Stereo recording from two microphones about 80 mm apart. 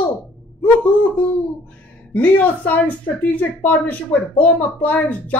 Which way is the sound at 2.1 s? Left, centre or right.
Left.